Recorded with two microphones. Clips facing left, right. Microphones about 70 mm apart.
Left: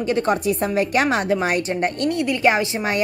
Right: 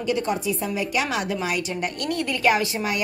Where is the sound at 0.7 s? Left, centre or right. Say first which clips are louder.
Left 7 dB; left.